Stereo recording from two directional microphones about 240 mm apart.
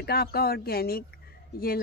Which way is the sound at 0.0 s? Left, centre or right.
Left.